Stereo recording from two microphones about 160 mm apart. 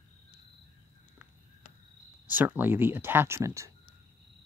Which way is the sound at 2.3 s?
10° right (ahead or behind).